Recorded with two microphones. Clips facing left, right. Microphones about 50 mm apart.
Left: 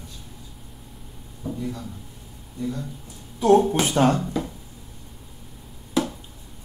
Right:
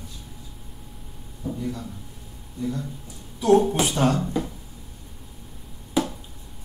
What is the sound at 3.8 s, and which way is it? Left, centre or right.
Speech, left.